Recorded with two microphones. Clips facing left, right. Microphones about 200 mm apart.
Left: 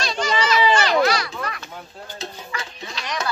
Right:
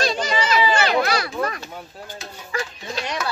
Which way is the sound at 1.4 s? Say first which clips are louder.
Right 6 dB; 35° right (ahead or behind).